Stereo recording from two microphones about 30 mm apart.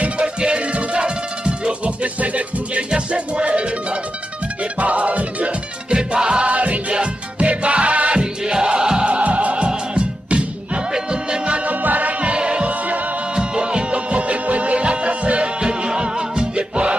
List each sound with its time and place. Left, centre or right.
0.7 s music: right
2.1 s music: right
4.7 s music: right
5.9 s music: right
6.4 s music: right
8.2 s music: right
9.1 s music: right
11.6 s music: right
12.2 s music: right
15.6 s music: right